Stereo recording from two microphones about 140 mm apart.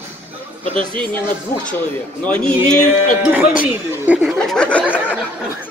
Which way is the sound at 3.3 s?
10° right (ahead or behind).